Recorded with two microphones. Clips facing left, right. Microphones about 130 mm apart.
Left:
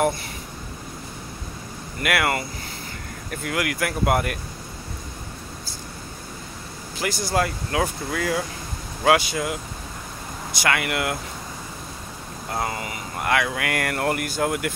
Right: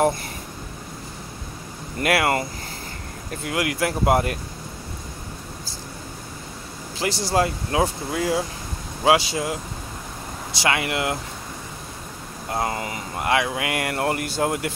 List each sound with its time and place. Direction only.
2.0 s speech: 35° right (ahead or behind)
7.0 s speech: 30° right (ahead or behind)
10.6 s speech: 25° right (ahead or behind)
12.4 s speech: 25° right (ahead or behind)